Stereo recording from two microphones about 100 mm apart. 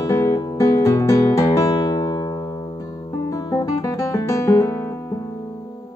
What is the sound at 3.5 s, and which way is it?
Music, 40° left (ahead or behind).